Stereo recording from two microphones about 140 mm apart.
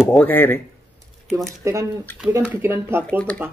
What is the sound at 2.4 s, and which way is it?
Speech, 15° right (ahead or behind).